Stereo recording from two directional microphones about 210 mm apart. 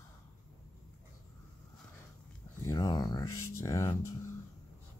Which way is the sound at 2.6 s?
20° left (ahead or behind).